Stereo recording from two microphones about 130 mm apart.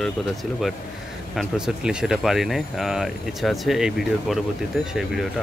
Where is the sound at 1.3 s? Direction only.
5° right (ahead or behind).